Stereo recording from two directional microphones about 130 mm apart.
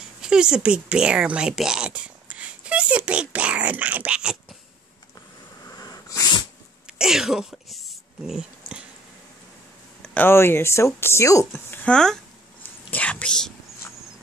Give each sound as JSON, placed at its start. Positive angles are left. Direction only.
{"t": 0.2, "sound": "speech", "side_deg": -5}
{"t": 5.7, "sound": "wheeze", "side_deg": 30}
{"t": 6.9, "sound": "a sound", "side_deg": -5}
{"t": 10.0, "sound": "speech", "side_deg": 15}
{"t": 12.6, "sound": "whispering", "side_deg": 10}